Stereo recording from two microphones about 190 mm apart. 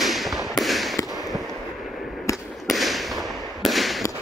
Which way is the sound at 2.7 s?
Centre (ahead or behind).